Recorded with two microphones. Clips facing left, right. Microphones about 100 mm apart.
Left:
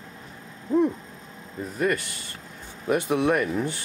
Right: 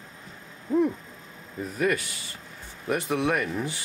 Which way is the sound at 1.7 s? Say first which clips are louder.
Left 1 dB; centre (ahead or behind).